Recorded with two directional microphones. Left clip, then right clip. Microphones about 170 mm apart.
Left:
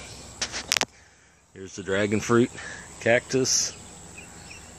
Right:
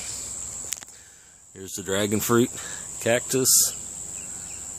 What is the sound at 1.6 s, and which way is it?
Speech, 20° right (ahead or behind).